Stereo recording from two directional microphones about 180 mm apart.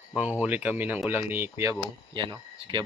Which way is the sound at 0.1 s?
5° right (ahead or behind).